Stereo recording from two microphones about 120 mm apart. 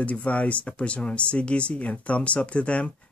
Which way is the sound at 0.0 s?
10° left (ahead or behind).